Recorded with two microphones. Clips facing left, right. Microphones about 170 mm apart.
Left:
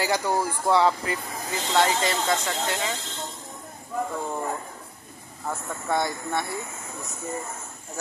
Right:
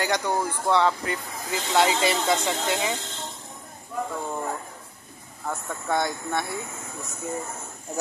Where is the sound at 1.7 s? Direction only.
15° right (ahead or behind).